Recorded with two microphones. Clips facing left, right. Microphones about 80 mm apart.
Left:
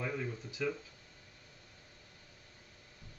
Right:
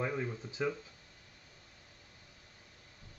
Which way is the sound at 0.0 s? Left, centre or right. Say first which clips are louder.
Right 3 dB; right.